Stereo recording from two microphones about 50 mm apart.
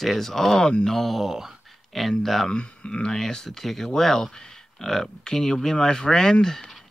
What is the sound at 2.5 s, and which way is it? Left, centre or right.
Speech, left.